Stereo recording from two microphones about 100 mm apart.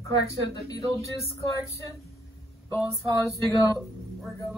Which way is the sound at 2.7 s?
30° left (ahead or behind).